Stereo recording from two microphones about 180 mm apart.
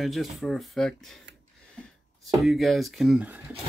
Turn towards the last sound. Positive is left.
turn(degrees=-5)  # may be behind; listen again after turning